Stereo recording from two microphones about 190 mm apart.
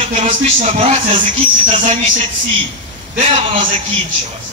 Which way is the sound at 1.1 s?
45° right (ahead or behind).